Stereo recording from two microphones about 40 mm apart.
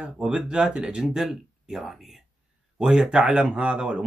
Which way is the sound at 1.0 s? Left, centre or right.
Centre.